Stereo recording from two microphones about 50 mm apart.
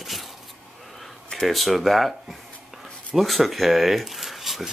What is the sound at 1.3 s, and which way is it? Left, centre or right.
Speech, centre.